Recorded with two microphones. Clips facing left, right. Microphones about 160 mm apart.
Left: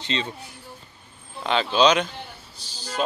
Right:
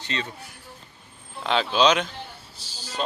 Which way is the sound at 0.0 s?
25° left (ahead or behind).